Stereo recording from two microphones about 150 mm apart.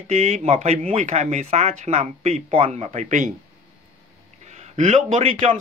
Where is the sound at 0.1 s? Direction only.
50° right (ahead or behind).